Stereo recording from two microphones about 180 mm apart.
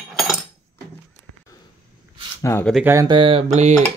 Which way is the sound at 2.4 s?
15° left (ahead or behind).